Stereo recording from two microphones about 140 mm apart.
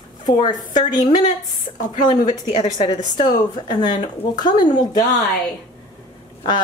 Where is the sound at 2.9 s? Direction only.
30° left (ahead or behind).